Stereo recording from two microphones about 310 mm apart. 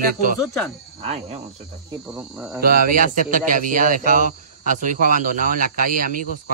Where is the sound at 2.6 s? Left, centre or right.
Right.